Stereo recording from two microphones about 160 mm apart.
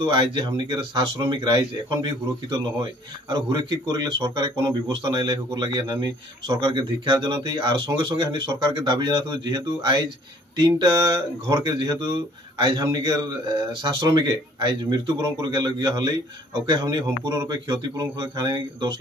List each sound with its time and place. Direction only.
0.0 s speech: 30° right (ahead or behind)